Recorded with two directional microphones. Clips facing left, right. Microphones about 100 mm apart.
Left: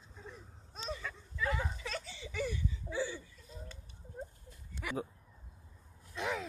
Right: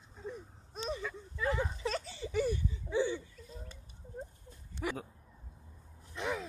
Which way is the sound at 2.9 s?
20° right (ahead or behind).